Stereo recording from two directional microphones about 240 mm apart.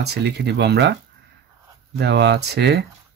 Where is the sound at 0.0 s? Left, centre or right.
Right.